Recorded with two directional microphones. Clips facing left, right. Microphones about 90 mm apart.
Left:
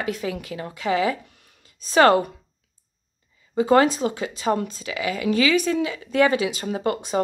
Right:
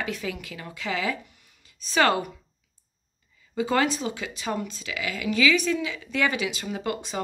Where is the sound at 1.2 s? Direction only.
55° left (ahead or behind); by 2.3 s 40° left (ahead or behind).